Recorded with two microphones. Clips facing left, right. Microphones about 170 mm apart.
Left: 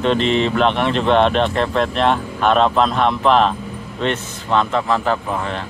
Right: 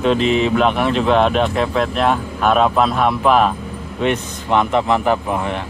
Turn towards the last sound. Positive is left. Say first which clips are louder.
# right 2 dB
turn(degrees=-15)  # may be behind; listen again after turning